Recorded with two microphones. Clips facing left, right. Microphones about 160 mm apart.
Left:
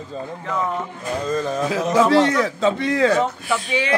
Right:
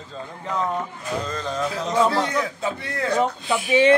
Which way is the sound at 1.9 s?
90° left.